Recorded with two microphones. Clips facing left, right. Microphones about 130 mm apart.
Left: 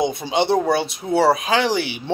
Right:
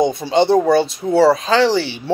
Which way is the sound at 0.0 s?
15° left (ahead or behind).